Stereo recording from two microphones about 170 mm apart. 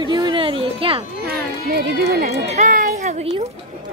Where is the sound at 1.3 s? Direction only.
65° right (ahead or behind).